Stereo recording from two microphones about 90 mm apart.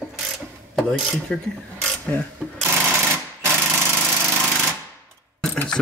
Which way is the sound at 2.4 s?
10° left (ahead or behind).